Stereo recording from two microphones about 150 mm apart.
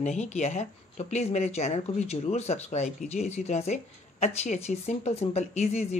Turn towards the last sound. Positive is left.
turn(degrees=45)  # may be behind; listen again after turning